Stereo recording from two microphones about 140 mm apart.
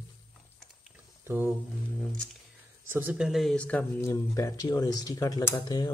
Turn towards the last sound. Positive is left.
turn(degrees=30)  # may be behind; listen again after turning